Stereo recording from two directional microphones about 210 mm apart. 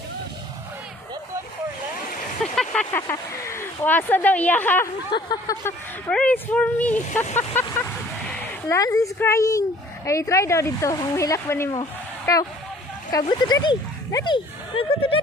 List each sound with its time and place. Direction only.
2.5 s vehicle: 5° left (ahead or behind)
3.0 s speech: 15° left (ahead or behind)
11.8 s a sound: 15° left (ahead or behind)
13.3 s speech: 20° left (ahead or behind)